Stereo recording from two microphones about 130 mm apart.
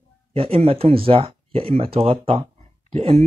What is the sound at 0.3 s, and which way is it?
Speech, 45° right (ahead or behind).